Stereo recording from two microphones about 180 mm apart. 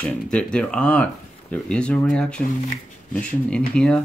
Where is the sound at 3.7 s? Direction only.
5° left (ahead or behind).